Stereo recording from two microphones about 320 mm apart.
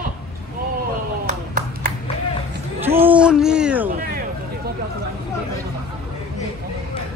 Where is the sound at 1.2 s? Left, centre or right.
Right.